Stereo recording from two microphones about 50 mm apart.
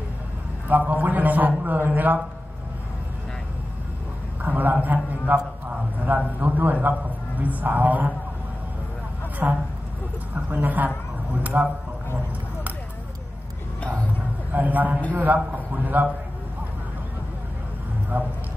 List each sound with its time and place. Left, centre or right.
0.7 s a man's voice: right
4.5 s a man's voice: right
9.4 s a man's voice: right
14.5 s a man's voice: right
18.1 s a man's voice: right